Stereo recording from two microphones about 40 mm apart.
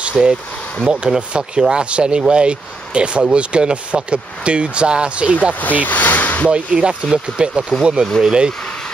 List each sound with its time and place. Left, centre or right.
0.0 s speech: right
5.5 s speech: left
6.5 s speech: centre
7.8 s speech: centre